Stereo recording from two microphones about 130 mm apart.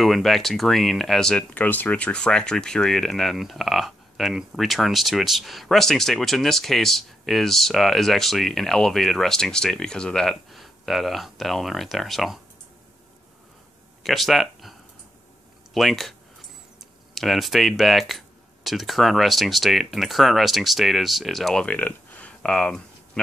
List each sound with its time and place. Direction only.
0.0 s speech: centre (ahead or behind)
14.0 s speech: centre (ahead or behind)